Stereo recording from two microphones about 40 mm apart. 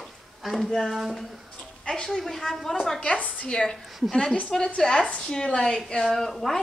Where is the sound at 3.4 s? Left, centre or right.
Centre.